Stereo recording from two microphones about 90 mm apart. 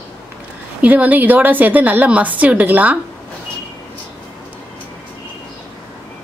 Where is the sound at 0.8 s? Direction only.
15° right (ahead or behind).